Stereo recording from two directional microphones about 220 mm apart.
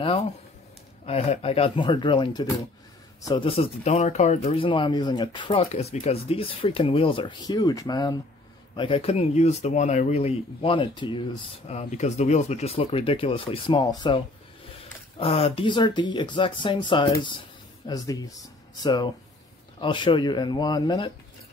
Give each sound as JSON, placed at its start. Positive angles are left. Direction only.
{"t": 1.0, "sound": "speech", "side_deg": 30}